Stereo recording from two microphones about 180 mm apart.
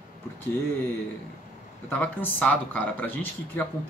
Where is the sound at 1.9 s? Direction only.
10° left (ahead or behind).